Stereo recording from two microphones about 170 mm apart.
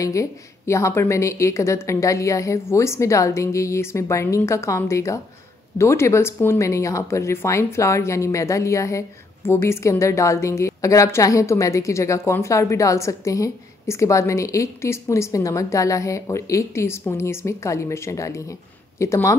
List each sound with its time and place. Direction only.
0.0 s speech: 20° left (ahead or behind)